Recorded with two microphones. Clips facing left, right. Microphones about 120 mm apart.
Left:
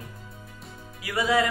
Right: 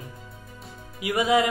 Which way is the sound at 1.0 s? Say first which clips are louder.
Right 2 dB; 20° right (ahead or behind).